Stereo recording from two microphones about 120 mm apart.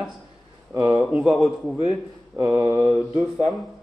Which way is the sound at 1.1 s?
Centre (ahead or behind).